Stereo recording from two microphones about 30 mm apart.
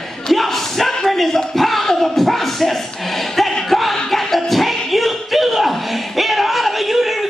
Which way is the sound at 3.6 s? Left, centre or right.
Centre.